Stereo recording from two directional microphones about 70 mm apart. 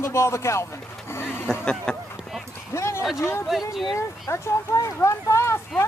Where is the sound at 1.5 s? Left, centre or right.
Centre.